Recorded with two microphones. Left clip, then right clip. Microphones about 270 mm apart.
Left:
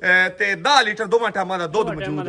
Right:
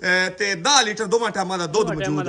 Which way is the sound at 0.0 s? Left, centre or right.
Centre.